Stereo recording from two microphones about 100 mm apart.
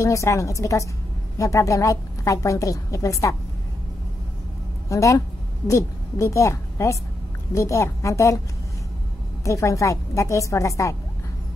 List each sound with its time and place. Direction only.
0.0 s a woman's voice: 30° left (ahead or behind)
4.8 s a woman's voice: 30° left (ahead or behind)
9.4 s a woman's voice: 30° left (ahead or behind)